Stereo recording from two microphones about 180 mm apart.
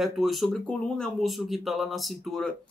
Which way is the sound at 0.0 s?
Centre (ahead or behind).